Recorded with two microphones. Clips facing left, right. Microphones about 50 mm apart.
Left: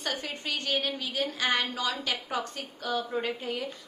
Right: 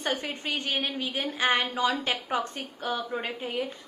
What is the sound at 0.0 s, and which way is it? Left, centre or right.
A woman's voice, right.